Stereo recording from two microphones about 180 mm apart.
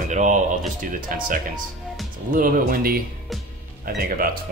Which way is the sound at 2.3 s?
50° right (ahead or behind).